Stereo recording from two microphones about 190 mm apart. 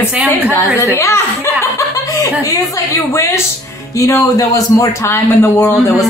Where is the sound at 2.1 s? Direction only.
15° left (ahead or behind).